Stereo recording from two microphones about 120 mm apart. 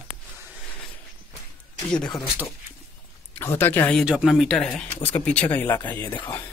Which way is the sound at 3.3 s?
20° left (ahead or behind).